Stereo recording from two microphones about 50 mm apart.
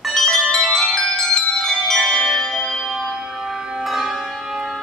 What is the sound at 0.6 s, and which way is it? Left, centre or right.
Music, centre.